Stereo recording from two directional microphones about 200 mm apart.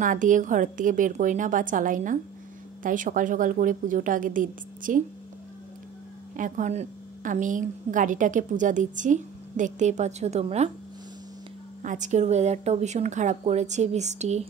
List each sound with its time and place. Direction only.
0.0 s a woman's voice: 40° right (ahead or behind)
6.3 s a woman's voice: 40° right (ahead or behind)
11.8 s a woman's voice: 40° right (ahead or behind)